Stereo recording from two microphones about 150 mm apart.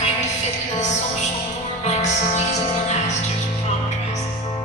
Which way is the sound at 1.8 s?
50° left (ahead or behind).